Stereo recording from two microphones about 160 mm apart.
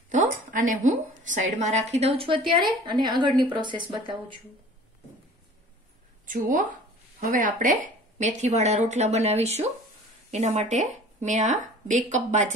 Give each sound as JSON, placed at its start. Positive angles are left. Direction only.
{"t": 0.5, "sound": "a woman's voice", "side_deg": -55}
{"t": 6.2, "sound": "speech", "side_deg": -55}